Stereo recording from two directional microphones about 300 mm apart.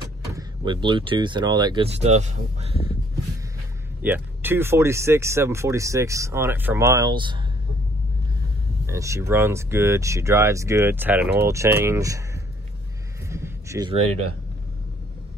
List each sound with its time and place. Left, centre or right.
0.2 s speech: centre
4.0 s speech: centre
8.8 s speech: centre
13.3 s a sound: centre